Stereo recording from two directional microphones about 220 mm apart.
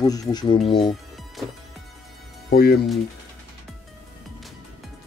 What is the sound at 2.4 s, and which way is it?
Music, 45° left (ahead or behind).